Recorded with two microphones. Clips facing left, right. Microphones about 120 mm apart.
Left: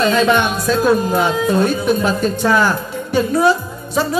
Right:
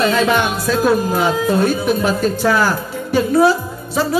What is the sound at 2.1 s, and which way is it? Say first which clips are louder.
Speech: even; 20° left (ahead or behind).